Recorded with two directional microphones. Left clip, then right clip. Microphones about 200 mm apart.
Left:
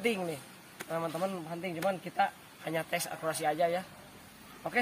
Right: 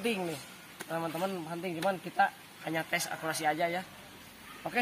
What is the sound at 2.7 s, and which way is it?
Speech, 45° left (ahead or behind).